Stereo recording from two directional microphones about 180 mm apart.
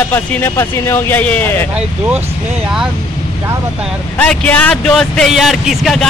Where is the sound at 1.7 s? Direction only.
10° right (ahead or behind).